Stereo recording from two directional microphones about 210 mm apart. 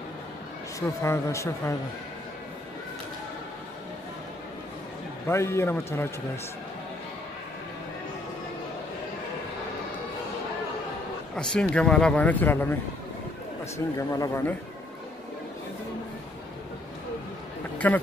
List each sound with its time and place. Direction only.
0.7 s a man's voice: 15° left (ahead or behind)
5.2 s a man's voice: 10° left (ahead or behind)
11.3 s speech: 5° left (ahead or behind)
13.9 s a man's voice: 15° left (ahead or behind)
17.7 s speech: 10° left (ahead or behind)